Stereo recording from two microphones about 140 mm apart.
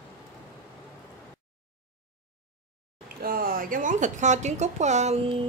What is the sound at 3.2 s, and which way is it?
Speech, 90° right.